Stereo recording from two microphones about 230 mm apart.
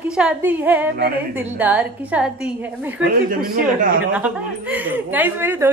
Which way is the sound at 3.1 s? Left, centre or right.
Right.